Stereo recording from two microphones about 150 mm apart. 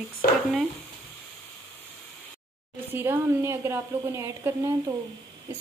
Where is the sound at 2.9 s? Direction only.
15° right (ahead or behind).